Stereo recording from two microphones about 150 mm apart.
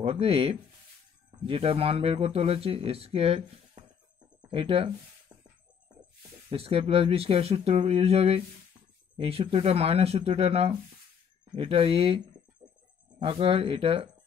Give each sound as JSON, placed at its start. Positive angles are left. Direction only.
{"t": 0.0, "sound": "speech", "side_deg": -40}
{"t": 6.5, "sound": "speech", "side_deg": -40}
{"t": 13.2, "sound": "speech", "side_deg": -35}